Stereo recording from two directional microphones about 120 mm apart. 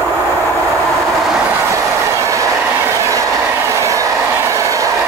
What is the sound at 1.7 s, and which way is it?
Train, 25° right (ahead or behind).